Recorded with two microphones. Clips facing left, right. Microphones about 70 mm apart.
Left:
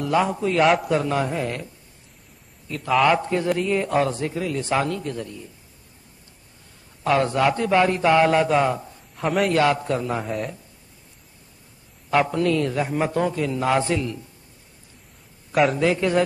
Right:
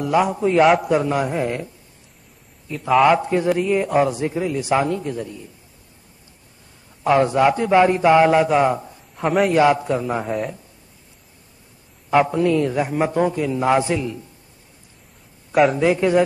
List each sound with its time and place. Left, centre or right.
0.0 s a man's voice: centre
0.7 s a man's voice: centre
1.3 s speech: right
2.9 s a man's voice: centre
7.0 s a man's voice: centre
9.1 s a man's voice: centre
9.5 s a man's voice: centre
9.8 s a man's voice: centre
12.1 s a man's voice: centre
15.5 s a man's voice: centre
15.8 s a man's voice: centre